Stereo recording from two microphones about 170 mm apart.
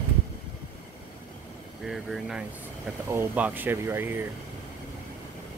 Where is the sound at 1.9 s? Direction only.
5° right (ahead or behind).